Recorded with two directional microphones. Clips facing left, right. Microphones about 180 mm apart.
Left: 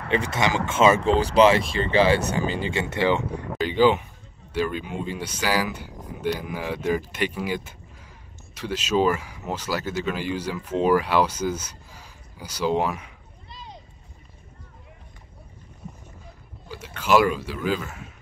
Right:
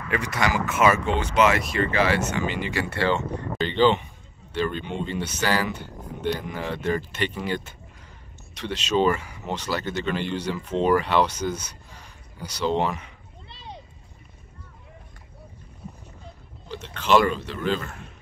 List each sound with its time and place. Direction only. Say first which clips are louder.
0.1 s speech: left 2 dB; 25° left (ahead or behind); by 13.1 s 5° left (ahead or behind)
13.5 s a sound: right 1 dB; 65° right (ahead or behind)
16.6 s speech: even; 10° left (ahead or behind)